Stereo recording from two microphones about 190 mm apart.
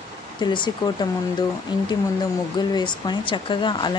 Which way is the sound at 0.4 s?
25° left (ahead or behind).